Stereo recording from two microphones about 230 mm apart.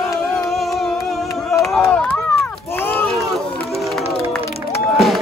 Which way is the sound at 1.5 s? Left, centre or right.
Centre.